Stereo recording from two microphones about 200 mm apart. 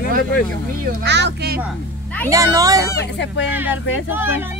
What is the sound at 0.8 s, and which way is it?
Speech, 60° right (ahead or behind).